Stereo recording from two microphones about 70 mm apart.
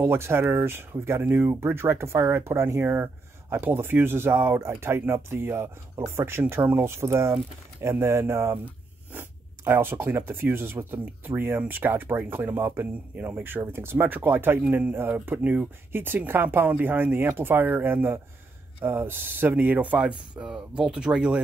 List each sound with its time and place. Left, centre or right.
0.0 s speech: right
9.7 s speech: right; by 21.4 s centre